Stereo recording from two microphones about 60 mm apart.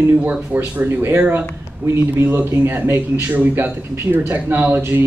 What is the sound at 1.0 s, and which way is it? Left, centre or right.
A man's voice, right.